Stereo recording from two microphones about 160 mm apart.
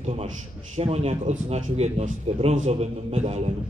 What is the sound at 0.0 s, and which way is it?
A man's voice, 40° right (ahead or behind).